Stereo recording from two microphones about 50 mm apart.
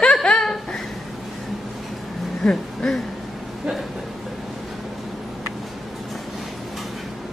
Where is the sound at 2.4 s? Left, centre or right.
Centre.